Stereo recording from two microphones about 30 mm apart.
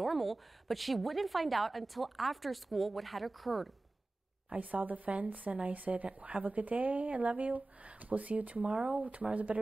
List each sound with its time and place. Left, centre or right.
0.0 s a woman's voice: centre
4.5 s speech: right